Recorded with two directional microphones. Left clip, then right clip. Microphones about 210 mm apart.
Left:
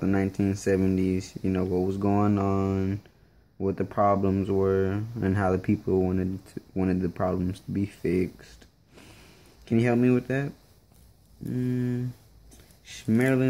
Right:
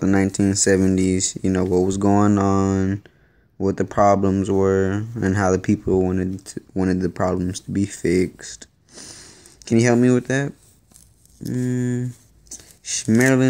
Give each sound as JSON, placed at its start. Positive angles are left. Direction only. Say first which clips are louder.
{"t": 0.0, "sound": "speech", "louder": "right 7 dB", "side_deg": -15}